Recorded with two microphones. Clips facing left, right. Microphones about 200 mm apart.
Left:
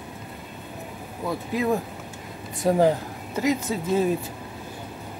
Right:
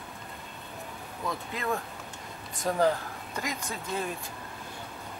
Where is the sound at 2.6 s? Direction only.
40° left (ahead or behind).